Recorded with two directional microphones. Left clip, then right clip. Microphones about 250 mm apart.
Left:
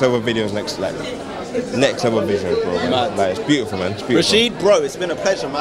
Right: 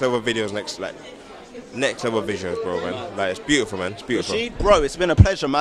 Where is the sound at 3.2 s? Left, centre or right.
Right.